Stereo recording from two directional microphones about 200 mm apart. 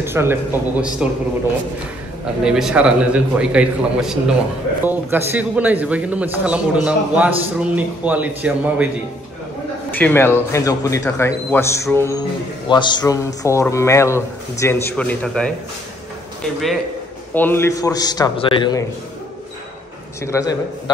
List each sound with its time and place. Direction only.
0.0 s a man's voice: 10° right (ahead or behind)
2.4 s a man's voice: 5° right (ahead or behind)
9.8 s speech: 10° left (ahead or behind)
17.3 s speech: 10° left (ahead or behind)
20.2 s speech: 15° left (ahead or behind)